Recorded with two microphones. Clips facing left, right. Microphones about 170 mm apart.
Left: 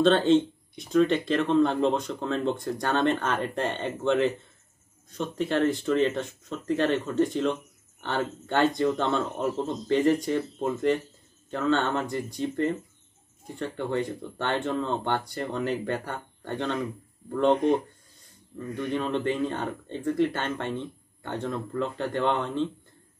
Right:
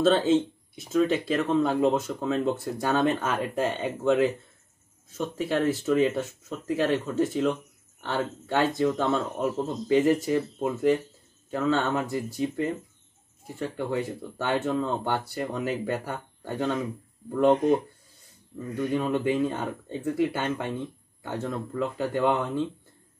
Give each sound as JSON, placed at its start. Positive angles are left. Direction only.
{"t": 0.0, "sound": "speech", "side_deg": -5}
{"t": 18.8, "sound": "speech", "side_deg": -10}